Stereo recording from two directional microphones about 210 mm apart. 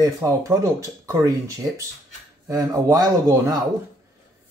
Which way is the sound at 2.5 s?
15° right (ahead or behind).